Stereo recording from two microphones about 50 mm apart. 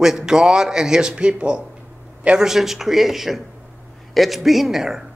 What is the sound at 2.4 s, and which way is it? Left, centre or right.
A man's voice, centre.